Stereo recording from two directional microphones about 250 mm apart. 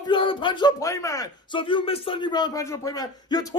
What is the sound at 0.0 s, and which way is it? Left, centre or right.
Speech, centre.